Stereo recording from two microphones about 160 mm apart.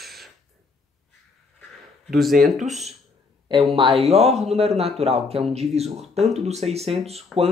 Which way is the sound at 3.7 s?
35° right (ahead or behind).